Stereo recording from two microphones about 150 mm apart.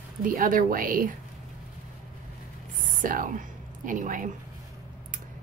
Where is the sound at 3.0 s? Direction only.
60° right (ahead or behind).